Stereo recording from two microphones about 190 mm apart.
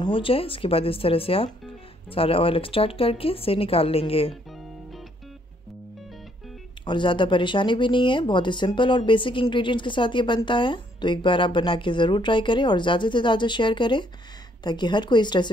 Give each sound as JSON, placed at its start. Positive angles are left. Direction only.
{"t": 0.0, "sound": "speech", "side_deg": 25}
{"t": 6.8, "sound": "speech", "side_deg": 25}